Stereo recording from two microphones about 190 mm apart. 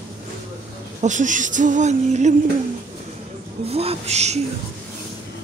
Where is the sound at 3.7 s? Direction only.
30° right (ahead or behind).